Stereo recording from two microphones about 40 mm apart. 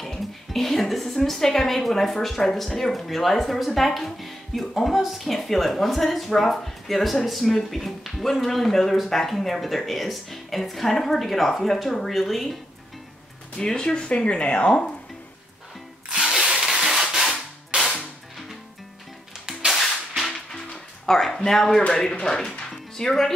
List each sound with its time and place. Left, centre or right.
0.0 s a woman's voice: centre
13.6 s speech: left
16.1 s drill: right
16.3 s a sound: centre
19.4 s music: centre
20.7 s a sound: centre
21.8 s speech: left
22.6 s music: centre